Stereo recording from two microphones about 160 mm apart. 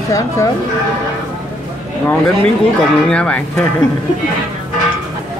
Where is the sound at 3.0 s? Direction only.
5° left (ahead or behind).